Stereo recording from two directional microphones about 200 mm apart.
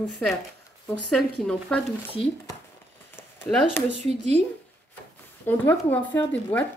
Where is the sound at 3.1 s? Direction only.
10° left (ahead or behind).